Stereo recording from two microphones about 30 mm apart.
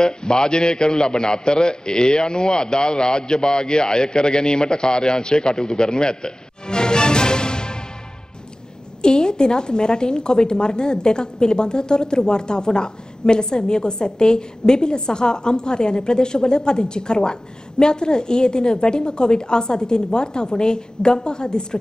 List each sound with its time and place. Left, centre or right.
0.0 s a woman's voice: left
9.0 s a woman's voice: left